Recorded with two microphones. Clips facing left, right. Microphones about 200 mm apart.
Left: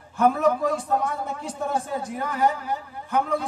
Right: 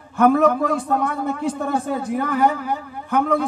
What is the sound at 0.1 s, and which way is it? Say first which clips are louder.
A man's voice: right 5 dB; 60° right (ahead or behind).